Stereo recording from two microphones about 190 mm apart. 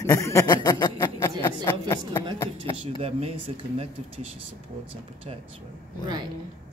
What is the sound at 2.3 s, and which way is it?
Speech, 15° left (ahead or behind).